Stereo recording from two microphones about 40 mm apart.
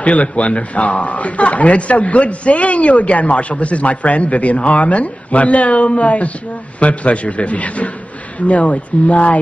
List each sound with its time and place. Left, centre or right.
0.0 s a man's voice: left